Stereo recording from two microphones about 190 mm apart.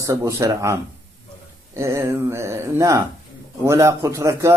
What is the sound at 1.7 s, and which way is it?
A man's voice, 15° right (ahead or behind).